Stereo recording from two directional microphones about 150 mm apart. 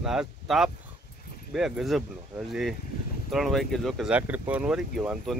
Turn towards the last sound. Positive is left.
turn(degrees=-5)  # may be behind; listen again after turning